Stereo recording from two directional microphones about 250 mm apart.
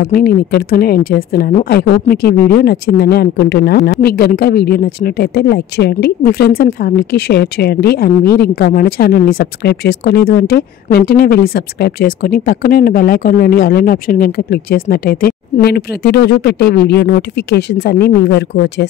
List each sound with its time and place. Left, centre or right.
0.0 s speech: left